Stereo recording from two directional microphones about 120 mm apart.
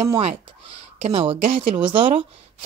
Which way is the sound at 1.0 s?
55° right (ahead or behind).